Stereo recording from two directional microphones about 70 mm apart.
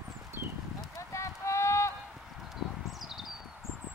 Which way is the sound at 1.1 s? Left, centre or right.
Left.